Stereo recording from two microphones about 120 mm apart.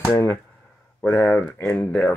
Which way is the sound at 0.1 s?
25° left (ahead or behind).